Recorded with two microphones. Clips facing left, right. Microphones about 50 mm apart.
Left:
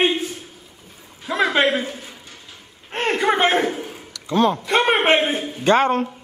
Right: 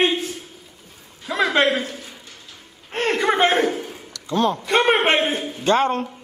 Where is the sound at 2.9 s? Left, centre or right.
Centre.